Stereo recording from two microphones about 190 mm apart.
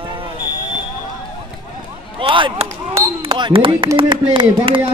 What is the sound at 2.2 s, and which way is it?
Speech, 30° right (ahead or behind).